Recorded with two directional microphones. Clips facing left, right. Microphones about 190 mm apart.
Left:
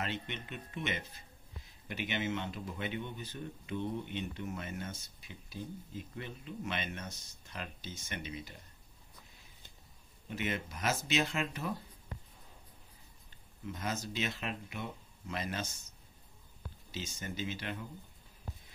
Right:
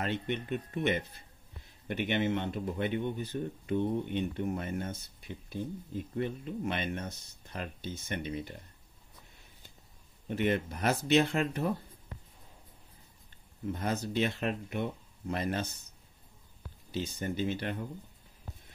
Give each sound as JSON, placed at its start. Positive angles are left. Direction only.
{"t": 0.0, "sound": "speech", "side_deg": -50}
{"t": 10.3, "sound": "speech", "side_deg": -55}
{"t": 13.8, "sound": "speech", "side_deg": -55}
{"t": 16.9, "sound": "speech", "side_deg": -55}